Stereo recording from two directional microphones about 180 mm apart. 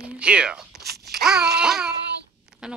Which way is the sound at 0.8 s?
65° right (ahead or behind).